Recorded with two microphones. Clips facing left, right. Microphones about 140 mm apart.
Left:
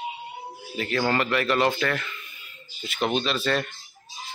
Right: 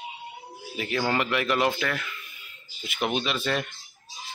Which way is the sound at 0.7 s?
10° right (ahead or behind).